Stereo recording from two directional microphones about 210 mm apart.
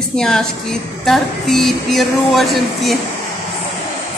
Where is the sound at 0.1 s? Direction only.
5° left (ahead or behind).